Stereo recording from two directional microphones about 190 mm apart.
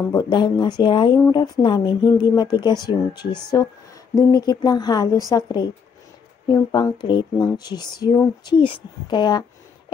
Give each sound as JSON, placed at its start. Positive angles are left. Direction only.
{"t": 0.1, "sound": "speech", "side_deg": 25}